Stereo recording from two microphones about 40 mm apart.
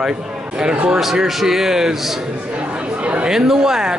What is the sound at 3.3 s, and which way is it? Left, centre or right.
Speech, centre.